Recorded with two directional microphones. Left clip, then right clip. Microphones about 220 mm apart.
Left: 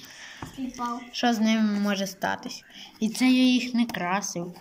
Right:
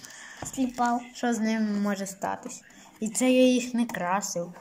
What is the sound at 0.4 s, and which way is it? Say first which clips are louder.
Speech: right 6 dB; 35° right (ahead or behind).